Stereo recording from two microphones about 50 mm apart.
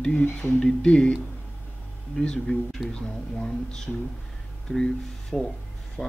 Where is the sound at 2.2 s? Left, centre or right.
Centre.